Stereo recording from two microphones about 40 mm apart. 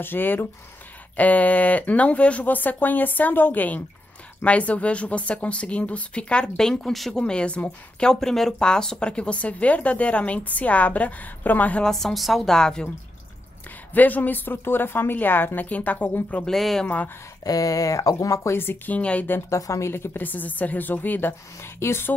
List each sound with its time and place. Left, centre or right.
0.0 s speech: left
1.1 s a woman's voice: left
2.4 s a woman's voice: left; by 6.9 s centre
6.9 s a woman's voice: centre
7.2 s a woman's voice: left
11.8 s a woman's voice: centre
12.4 s speech: centre
13.9 s speech: left
15.6 s a woman's voice: left
16.4 s speech: centre
16.8 s a woman's voice: left
18.5 s speech: left
18.9 s a woman's voice: left
20.2 s a woman's voice: left